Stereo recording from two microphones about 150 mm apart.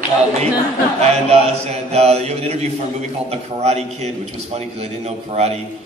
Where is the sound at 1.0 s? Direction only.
45° right (ahead or behind).